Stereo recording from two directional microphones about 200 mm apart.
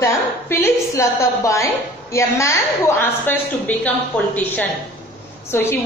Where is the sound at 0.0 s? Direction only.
15° left (ahead or behind).